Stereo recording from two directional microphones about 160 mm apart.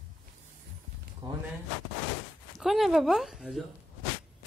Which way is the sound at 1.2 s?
30° right (ahead or behind).